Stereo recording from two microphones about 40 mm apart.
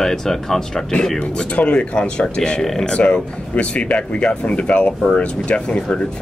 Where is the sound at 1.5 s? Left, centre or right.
Left.